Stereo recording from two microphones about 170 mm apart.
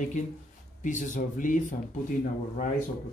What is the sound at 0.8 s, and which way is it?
Speech, 50° left (ahead or behind).